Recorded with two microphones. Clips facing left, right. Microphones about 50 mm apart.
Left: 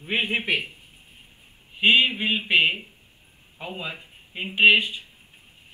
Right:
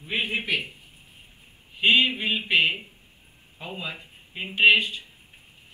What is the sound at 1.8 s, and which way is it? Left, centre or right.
Speech, centre.